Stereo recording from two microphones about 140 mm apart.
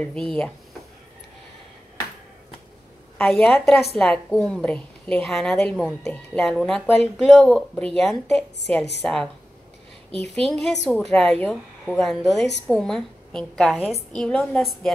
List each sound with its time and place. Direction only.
0.0 s speech: 5° left (ahead or behind)
3.2 s a woman's voice: centre (ahead or behind)
10.3 s a woman's voice: 5° left (ahead or behind)